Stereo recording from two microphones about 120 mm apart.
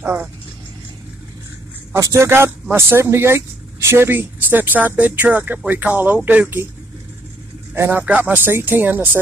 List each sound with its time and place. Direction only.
0.0 s speech: 15° right (ahead or behind)
2.0 s a man's voice: 25° right (ahead or behind)
7.7 s speech: 20° right (ahead or behind)